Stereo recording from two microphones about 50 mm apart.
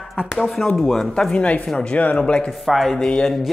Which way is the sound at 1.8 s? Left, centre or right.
Left.